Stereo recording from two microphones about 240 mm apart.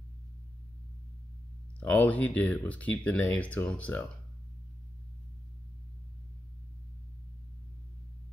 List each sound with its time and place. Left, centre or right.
1.8 s speech: centre